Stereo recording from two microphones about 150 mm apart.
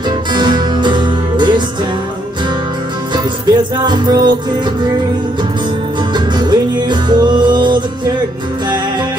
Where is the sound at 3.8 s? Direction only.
30° right (ahead or behind).